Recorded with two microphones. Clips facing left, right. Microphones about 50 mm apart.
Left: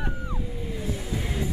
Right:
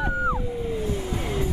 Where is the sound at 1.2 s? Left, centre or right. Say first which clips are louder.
Right 3 dB; right.